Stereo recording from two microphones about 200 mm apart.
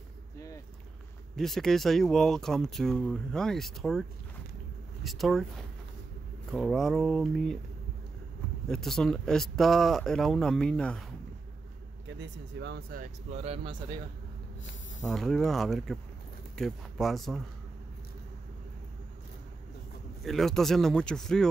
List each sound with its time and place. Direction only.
1.3 s speech: centre (ahead or behind)
5.0 s speech: centre (ahead or behind)
8.6 s speech: 5° left (ahead or behind)
12.1 s speech: 65° right (ahead or behind); by 13.9 s 25° right (ahead or behind)
15.0 s speech: centre (ahead or behind)
20.2 s speech: centre (ahead or behind)